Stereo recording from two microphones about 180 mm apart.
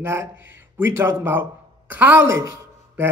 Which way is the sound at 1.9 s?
10° right (ahead or behind).